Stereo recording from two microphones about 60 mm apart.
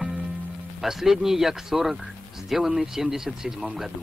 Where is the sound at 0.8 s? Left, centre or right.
Centre.